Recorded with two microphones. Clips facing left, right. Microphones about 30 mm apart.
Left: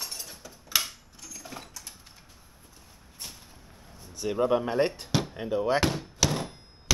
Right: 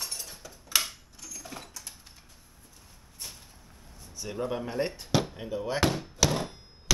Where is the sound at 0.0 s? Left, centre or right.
Centre.